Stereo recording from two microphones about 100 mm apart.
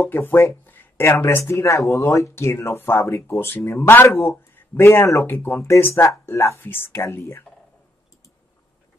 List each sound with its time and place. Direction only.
0.0 s speech: 20° left (ahead or behind)